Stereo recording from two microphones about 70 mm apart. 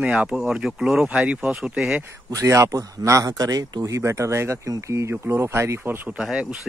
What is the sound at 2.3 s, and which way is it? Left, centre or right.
Speech, right.